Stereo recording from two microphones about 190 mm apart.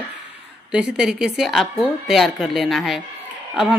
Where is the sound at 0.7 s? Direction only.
5° right (ahead or behind).